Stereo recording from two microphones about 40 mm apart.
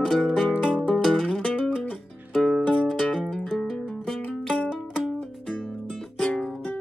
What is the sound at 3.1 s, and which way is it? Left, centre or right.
Music, centre.